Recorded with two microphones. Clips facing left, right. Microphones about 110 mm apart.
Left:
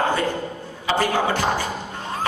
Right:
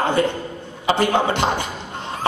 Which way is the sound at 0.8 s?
25° right (ahead or behind).